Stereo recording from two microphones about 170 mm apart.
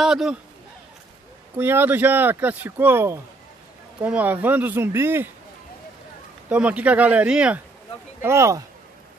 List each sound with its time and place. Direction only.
0.0 s speech: 5° right (ahead or behind)
1.6 s speech: 10° right (ahead or behind)
6.5 s speech: 10° right (ahead or behind)